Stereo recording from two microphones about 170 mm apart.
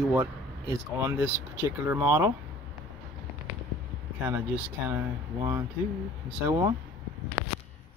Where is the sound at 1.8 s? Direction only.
15° right (ahead or behind).